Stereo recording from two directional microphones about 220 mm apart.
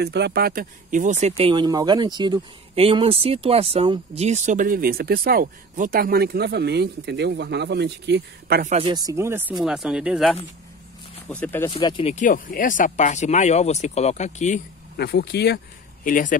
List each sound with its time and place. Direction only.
0.0 s speech: 50° right (ahead or behind)
8.7 s speech: 20° right (ahead or behind)
9.7 s speech: 5° right (ahead or behind)
11.7 s speech: 25° left (ahead or behind)
15.0 s speech: 45° left (ahead or behind)